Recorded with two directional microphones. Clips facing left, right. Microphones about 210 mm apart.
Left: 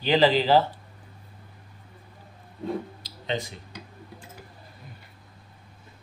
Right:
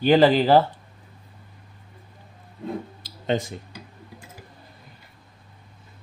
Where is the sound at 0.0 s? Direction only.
50° right (ahead or behind).